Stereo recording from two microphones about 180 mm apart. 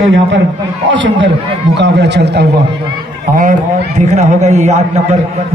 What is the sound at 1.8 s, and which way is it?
Speech, 70° right (ahead or behind).